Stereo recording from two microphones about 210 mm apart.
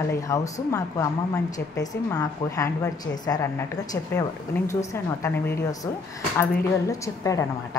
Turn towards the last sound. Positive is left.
turn(degrees=15)  # may be behind; listen again after turning